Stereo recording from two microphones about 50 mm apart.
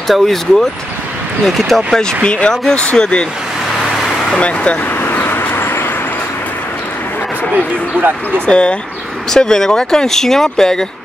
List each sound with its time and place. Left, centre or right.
0.1 s speech: centre
2.2 s speech: left
2.5 s speech: centre
2.8 s speech: left
4.4 s speech: left
5.0 s vehicle: left
8.5 s speech: centre